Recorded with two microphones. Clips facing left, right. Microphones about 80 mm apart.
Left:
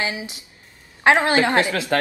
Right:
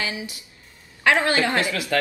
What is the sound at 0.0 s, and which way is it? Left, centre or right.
Speech, left.